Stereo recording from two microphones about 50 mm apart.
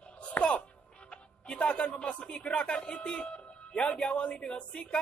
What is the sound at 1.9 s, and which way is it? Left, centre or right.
Speech, centre.